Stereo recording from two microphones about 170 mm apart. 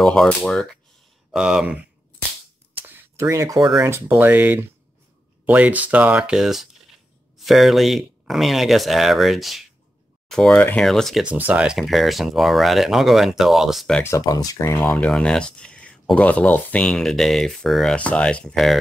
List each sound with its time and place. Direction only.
0.0 s speech: centre (ahead or behind)
2.9 s speech: 15° right (ahead or behind); by 14.0 s centre (ahead or behind)
14.1 s speech: 20° left (ahead or behind)
14.9 s speech: 5° left (ahead or behind)